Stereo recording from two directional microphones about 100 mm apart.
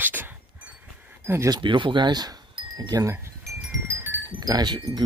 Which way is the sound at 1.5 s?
55° right (ahead or behind).